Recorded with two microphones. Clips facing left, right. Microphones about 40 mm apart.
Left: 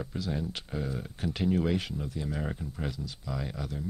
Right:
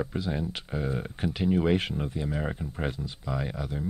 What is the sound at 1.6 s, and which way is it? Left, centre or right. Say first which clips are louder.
Speech: right 5 dB; right.